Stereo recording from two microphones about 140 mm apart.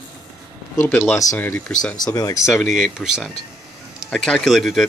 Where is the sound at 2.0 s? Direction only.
25° left (ahead or behind).